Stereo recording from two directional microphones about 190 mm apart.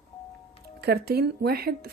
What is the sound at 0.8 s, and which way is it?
Speech, 55° right (ahead or behind).